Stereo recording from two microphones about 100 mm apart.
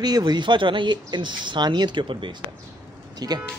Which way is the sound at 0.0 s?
45° right (ahead or behind).